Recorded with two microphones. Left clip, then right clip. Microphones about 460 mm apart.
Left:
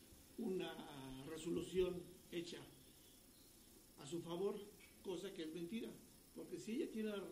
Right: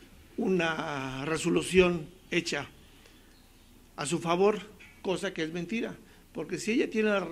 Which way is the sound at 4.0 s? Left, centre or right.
Right.